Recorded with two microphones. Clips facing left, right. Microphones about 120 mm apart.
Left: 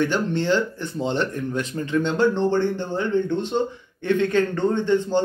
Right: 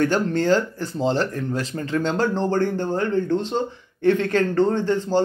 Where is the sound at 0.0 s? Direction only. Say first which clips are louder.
Right 2 dB; 40° right (ahead or behind).